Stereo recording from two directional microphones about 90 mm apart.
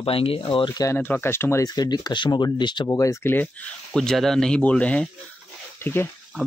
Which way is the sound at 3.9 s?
5° left (ahead or behind).